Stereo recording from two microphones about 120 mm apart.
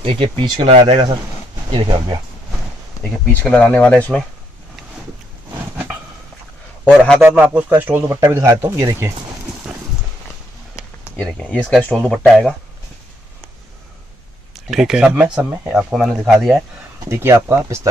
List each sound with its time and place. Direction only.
0.0 s speech: 45° right (ahead or behind)
0.7 s speech: 65° right (ahead or behind)
1.7 s speech: 40° right (ahead or behind)
3.0 s speech: 10° left (ahead or behind)
7.2 s speech: 15° right (ahead or behind)
10.8 s a sound: 25° left (ahead or behind)
11.1 s speech: 5° left (ahead or behind)
14.5 s speech: 5° right (ahead or behind)
17.1 s speech: 20° right (ahead or behind)